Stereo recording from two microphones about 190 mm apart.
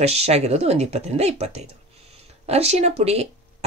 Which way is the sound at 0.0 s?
35° right (ahead or behind).